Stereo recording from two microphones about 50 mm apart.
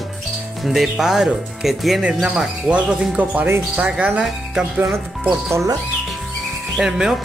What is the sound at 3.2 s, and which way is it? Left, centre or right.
Speech, right.